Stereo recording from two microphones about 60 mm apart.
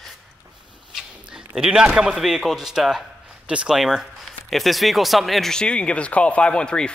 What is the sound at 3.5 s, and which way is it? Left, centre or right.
Speech, centre.